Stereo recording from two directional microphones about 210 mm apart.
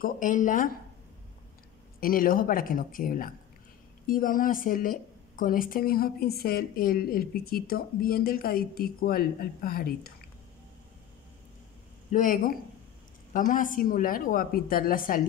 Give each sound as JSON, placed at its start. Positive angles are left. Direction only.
{"t": 0.0, "sound": "speech", "side_deg": 40}
{"t": 2.0, "sound": "a woman's voice", "side_deg": 45}
{"t": 12.1, "sound": "speech", "side_deg": 40}